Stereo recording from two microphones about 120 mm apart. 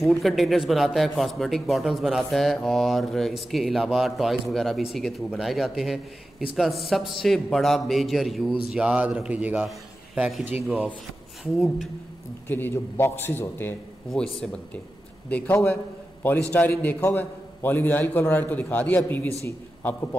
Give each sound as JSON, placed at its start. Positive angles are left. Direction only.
{"t": 0.0, "sound": "a man's voice", "side_deg": 0}
{"t": 11.5, "sound": "a man's voice", "side_deg": 0}
{"t": 12.4, "sound": "a man's voice", "side_deg": 15}
{"t": 14.1, "sound": "a man's voice", "side_deg": 5}